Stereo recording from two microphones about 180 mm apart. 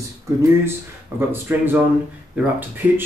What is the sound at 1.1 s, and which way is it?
Speech, 10° right (ahead or behind).